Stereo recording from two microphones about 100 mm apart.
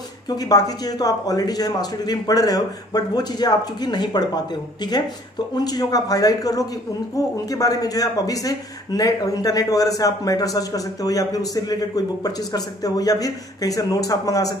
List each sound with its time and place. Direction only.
0.4 s a man's voice: 40° left (ahead or behind)
5.6 s a man's voice: 40° left (ahead or behind)